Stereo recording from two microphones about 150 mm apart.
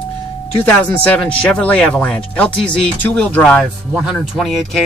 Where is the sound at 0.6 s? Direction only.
10° left (ahead or behind).